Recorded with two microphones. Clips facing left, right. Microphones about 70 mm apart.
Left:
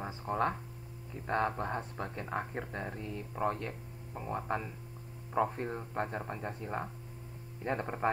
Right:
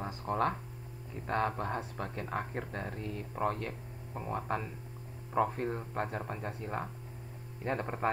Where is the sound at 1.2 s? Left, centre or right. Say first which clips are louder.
Even; left.